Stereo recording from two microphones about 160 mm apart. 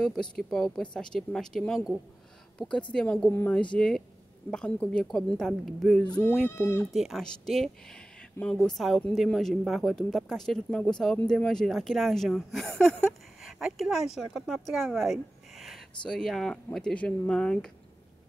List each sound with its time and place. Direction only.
0.0 s a woman's voice: 5° left (ahead or behind)
6.5 s a woman's voice: 15° left (ahead or behind)
6.9 s speech: centre (ahead or behind)